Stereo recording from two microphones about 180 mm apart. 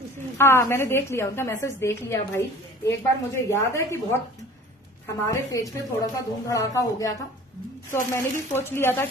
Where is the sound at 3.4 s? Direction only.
15° left (ahead or behind).